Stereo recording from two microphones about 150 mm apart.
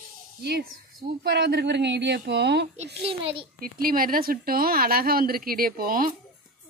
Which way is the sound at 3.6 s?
75° right (ahead or behind).